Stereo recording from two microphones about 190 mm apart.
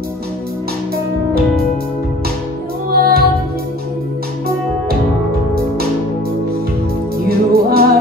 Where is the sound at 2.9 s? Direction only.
50° right (ahead or behind).